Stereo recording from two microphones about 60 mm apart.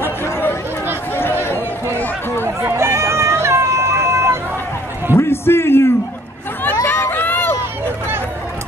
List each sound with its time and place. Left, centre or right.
0.0 s chatter: left
2.4 s run: right
5.1 s a sound: left
6.9 s run: left